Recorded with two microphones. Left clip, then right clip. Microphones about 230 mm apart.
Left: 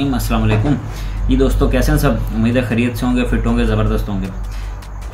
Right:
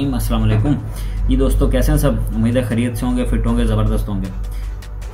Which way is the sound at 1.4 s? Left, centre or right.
Centre.